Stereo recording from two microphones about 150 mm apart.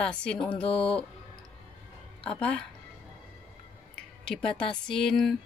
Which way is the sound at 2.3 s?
10° left (ahead or behind).